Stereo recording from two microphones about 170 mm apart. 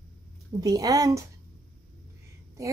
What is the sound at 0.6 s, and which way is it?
Speech, 20° right (ahead or behind).